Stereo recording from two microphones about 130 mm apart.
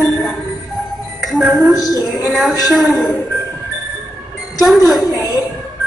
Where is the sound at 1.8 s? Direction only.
30° left (ahead or behind).